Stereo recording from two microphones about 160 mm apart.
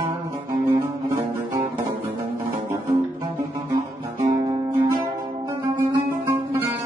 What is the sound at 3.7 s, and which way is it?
Guitar, 25° right (ahead or behind).